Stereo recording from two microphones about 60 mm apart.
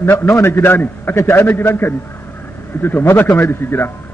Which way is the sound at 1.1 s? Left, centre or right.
Left.